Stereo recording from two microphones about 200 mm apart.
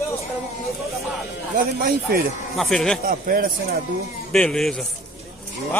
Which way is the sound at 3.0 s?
45° right (ahead or behind).